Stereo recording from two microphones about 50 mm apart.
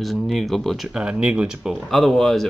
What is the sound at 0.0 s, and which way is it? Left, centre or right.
Speech, centre.